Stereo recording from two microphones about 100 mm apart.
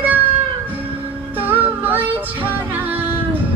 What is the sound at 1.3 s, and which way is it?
Music, 20° right (ahead or behind).